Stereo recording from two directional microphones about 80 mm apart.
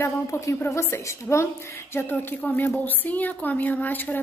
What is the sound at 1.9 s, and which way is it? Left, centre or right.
A woman's voice, left.